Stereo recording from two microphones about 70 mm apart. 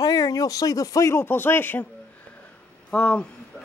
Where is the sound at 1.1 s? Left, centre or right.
Left.